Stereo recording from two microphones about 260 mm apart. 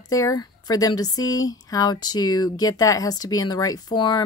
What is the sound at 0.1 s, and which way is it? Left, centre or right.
Speech, centre.